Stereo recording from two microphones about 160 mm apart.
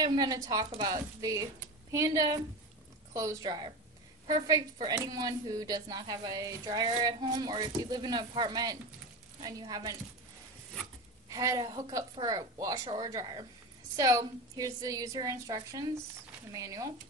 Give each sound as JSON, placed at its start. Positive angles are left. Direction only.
{"t": 0.0, "sound": "speech", "side_deg": -25}
{"t": 11.2, "sound": "speech", "side_deg": -20}